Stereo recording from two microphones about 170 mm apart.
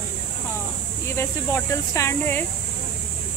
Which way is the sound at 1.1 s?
15° left (ahead or behind).